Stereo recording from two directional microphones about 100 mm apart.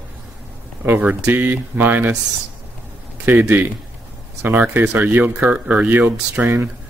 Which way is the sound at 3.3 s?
20° right (ahead or behind).